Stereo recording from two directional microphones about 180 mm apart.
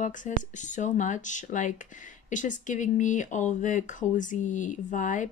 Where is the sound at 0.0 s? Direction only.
45° left (ahead or behind).